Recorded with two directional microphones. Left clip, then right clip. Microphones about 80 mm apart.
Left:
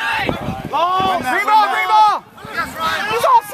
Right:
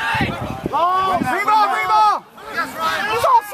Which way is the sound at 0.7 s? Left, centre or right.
Left.